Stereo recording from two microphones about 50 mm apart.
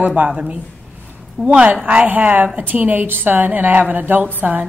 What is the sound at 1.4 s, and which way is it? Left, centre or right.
Speech, centre.